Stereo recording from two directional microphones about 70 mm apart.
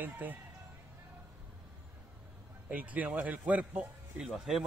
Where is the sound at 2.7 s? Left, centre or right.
Right.